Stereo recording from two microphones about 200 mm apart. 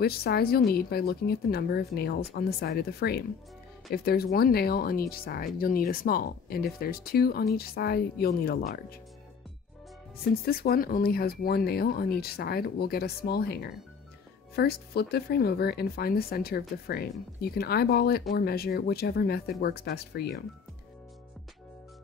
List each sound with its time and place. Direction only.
0.0 s speech: 50° left (ahead or behind)
10.3 s speech: 50° left (ahead or behind)